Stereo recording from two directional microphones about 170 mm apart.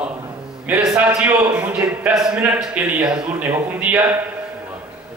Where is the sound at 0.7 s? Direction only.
15° right (ahead or behind).